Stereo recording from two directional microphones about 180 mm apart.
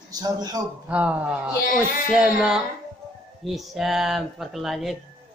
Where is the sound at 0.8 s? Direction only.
5° right (ahead or behind).